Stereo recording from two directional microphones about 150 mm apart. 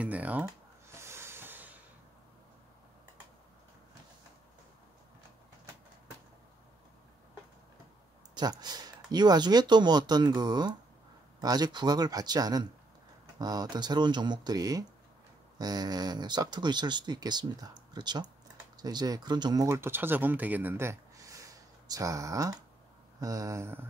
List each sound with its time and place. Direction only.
0.0 s music: 10° right (ahead or behind)
8.4 s speech: 25° right (ahead or behind)